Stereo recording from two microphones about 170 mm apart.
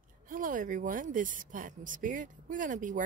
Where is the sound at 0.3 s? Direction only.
50° right (ahead or behind).